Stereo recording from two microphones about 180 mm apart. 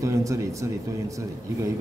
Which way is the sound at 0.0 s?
15° right (ahead or behind).